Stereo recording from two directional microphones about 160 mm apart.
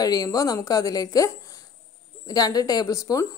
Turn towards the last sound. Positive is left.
turn(degrees=20)  # may be behind; listen again after turning